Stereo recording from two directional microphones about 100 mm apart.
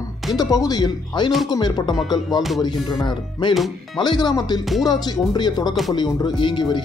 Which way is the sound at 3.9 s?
50° left (ahead or behind).